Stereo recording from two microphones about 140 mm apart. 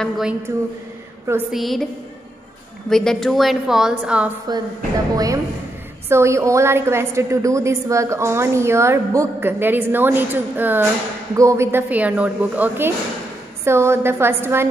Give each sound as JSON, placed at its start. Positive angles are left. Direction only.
{"t": 0.0, "sound": "a woman's voice", "side_deg": -5}
{"t": 1.5, "sound": "a woman's voice", "side_deg": 0}
{"t": 2.9, "sound": "a woman's voice", "side_deg": 5}
{"t": 5.1, "sound": "a woman's voice", "side_deg": -25}